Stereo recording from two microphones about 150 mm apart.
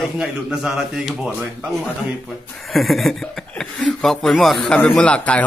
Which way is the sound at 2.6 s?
Centre (ahead or behind).